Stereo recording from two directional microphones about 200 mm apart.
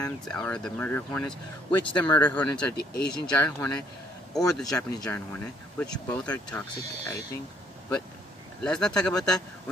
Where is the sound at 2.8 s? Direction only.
50° left (ahead or behind).